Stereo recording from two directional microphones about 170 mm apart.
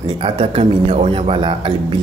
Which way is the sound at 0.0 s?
30° right (ahead or behind).